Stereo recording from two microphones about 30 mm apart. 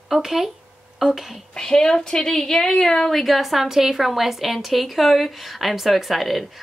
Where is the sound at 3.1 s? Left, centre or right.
Centre.